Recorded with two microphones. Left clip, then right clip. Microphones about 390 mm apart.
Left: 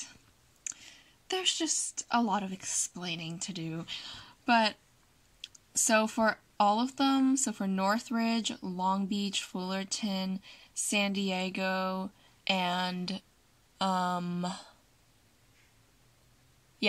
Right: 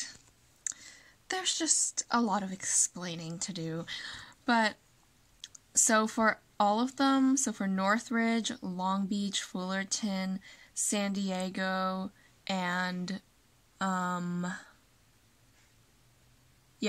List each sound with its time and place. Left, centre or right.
1.2 s speech: centre